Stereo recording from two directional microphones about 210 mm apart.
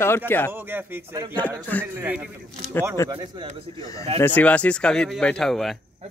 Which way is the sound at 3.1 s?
20° right (ahead or behind).